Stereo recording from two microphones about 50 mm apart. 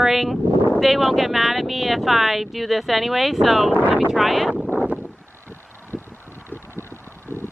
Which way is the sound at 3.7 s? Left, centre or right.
Right.